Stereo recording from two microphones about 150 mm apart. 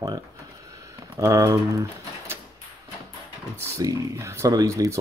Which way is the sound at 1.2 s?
20° right (ahead or behind).